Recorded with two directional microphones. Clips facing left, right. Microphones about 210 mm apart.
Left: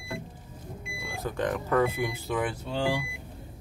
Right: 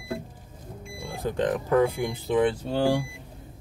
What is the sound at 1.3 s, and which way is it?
Speech, 20° right (ahead or behind).